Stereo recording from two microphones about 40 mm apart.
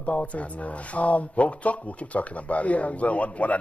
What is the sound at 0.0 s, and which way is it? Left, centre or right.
Speech, left.